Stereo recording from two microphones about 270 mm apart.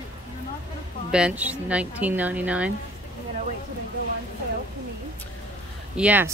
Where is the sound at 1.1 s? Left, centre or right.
Centre.